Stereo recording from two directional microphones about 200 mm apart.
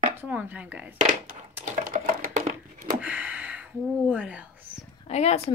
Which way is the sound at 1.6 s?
40° right (ahead or behind).